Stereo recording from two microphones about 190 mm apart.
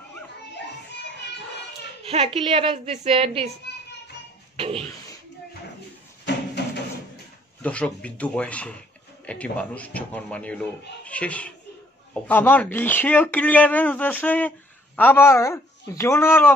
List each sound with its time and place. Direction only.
2.0 s a woman's voice: 30° right (ahead or behind)
3.7 s children playing: 60° left (ahead or behind)
4.6 s speech: 30° right (ahead or behind)
6.6 s a sound: 60° left (ahead or behind)
7.6 s speech: 5° left (ahead or behind)